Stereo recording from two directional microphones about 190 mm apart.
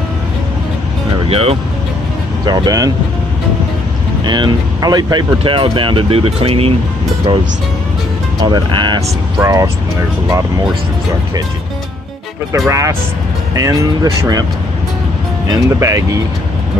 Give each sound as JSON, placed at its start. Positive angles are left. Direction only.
{"t": 1.2, "sound": "speech", "side_deg": -30}
{"t": 2.4, "sound": "speech", "side_deg": -20}
{"t": 4.2, "sound": "speech", "side_deg": -25}
{"t": 8.5, "sound": "speech", "side_deg": -25}
{"t": 12.5, "sound": "speech", "side_deg": -15}
{"t": 15.4, "sound": "speech", "side_deg": -20}